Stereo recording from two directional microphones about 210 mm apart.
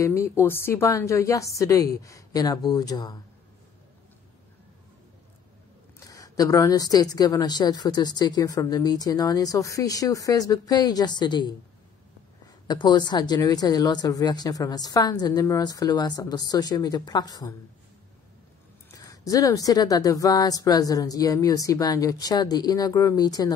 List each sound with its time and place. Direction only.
0.0 s a woman's voice: 15° left (ahead or behind)
6.0 s a woman's voice: 15° left (ahead or behind)
12.6 s speech: 20° left (ahead or behind)
18.9 s a woman's voice: 15° left (ahead or behind)